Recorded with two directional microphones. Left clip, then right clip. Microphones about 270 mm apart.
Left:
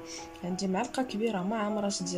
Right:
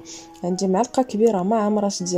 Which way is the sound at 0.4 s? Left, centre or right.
Right.